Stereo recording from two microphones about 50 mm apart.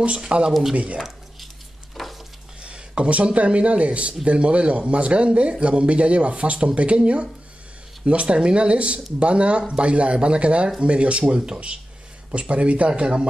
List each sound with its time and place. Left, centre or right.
0.5 s speech: centre
0.7 s speech: right
2.0 s sizzle: centre
2.6 s speech: centre